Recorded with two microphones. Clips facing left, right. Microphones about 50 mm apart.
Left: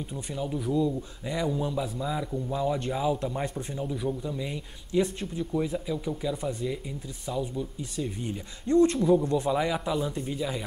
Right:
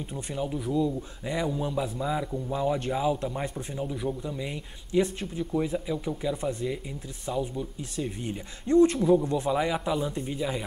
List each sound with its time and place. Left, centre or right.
0.1 s speech: centre